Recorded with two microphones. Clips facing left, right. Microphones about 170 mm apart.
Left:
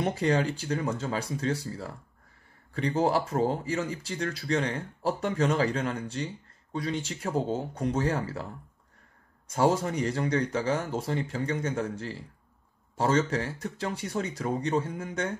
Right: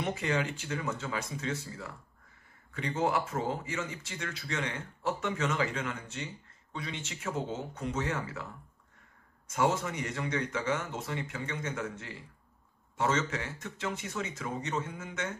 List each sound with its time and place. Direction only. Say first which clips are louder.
0.0 s speech: left 6 dB; 35° left (ahead or behind)
9.5 s speech: left 5 dB; 35° left (ahead or behind)